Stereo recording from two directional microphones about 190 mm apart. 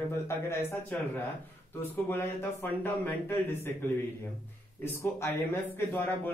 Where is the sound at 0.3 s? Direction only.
15° left (ahead or behind).